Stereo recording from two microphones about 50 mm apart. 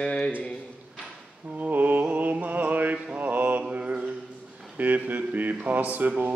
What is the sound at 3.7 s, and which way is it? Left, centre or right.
Mantra, right.